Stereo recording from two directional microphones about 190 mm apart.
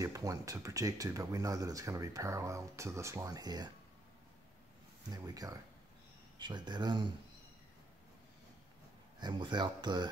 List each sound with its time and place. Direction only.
0.0 s speech: 15° right (ahead or behind)
5.1 s speech: 20° right (ahead or behind)
9.2 s speech: 25° right (ahead or behind)